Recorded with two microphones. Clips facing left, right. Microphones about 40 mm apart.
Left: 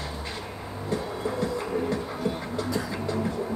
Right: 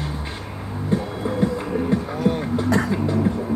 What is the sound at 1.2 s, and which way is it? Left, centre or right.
Heart murmur, right.